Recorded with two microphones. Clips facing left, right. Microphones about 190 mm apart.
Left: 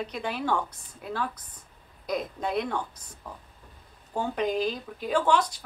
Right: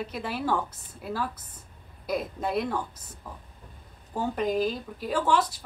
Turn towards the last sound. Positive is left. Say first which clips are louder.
# left 1 dB
turn(degrees=-5)  # may be behind; listen again after turning